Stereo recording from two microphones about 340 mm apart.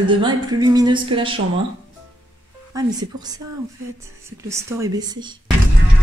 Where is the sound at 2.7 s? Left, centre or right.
Centre.